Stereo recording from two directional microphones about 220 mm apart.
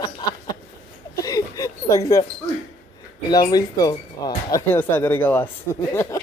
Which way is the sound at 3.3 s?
15° left (ahead or behind).